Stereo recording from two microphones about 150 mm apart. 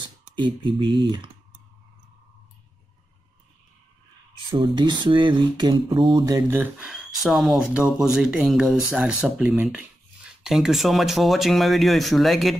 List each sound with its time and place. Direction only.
0.4 s speech: 30° right (ahead or behind)
4.5 s speech: 30° right (ahead or behind)
6.6 s speech: 5° right (ahead or behind)